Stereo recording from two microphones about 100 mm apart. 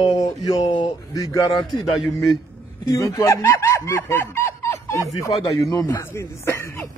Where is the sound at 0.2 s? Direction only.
40° left (ahead or behind).